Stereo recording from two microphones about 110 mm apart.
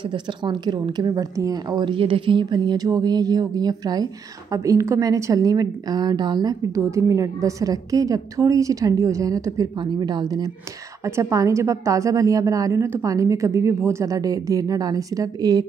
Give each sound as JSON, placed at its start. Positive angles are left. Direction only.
{"t": 0.1, "sound": "a woman's voice", "side_deg": -45}
{"t": 6.7, "sound": "a woman's voice", "side_deg": -30}
{"t": 11.1, "sound": "a woman's voice", "side_deg": -25}